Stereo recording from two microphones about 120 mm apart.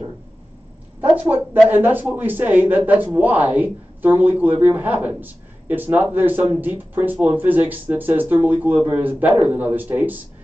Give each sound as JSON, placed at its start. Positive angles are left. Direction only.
{"t": 1.0, "sound": "speech", "side_deg": -15}